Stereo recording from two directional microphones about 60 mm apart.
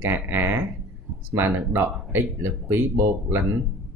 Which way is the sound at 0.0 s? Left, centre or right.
Right.